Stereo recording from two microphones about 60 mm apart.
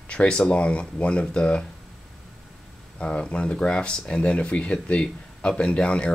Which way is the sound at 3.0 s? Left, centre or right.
Centre.